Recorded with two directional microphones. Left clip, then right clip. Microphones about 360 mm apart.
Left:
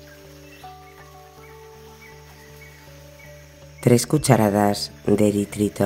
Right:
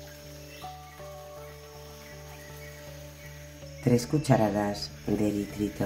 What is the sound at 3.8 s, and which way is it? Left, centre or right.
Speech, left.